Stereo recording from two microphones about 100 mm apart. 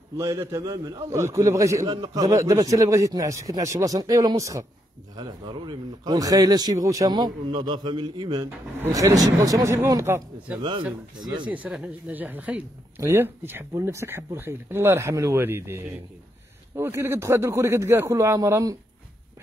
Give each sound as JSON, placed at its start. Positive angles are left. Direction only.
{"t": 0.2, "sound": "a man's voice", "side_deg": -30}
{"t": 1.9, "sound": "a man's voice", "side_deg": -45}
{"t": 5.1, "sound": "speech", "side_deg": -50}
{"t": 8.9, "sound": "a man's voice", "side_deg": -35}
{"t": 11.1, "sound": "speech", "side_deg": -50}
{"t": 11.6, "sound": "speech", "side_deg": -10}